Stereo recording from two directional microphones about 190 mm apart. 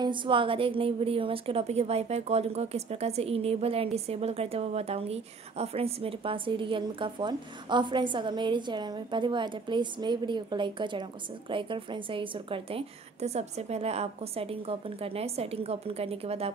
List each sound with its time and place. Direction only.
0.0 s a woman's voice: 25° right (ahead or behind)